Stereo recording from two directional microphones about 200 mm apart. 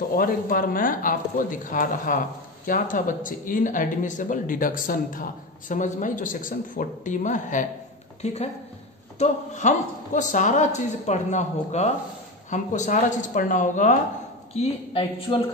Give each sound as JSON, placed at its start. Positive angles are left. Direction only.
{"t": 0.1, "sound": "speech", "side_deg": 45}